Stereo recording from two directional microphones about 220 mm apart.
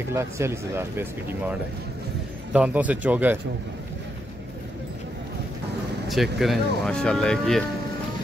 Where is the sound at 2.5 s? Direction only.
5° right (ahead or behind).